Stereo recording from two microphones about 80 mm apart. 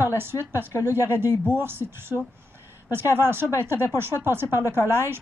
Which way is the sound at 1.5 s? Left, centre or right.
Right.